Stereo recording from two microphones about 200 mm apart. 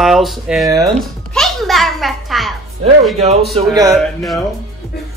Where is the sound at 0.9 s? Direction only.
Centre (ahead or behind).